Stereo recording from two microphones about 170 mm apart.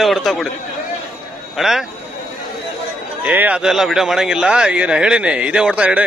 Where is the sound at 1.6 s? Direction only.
Centre (ahead or behind).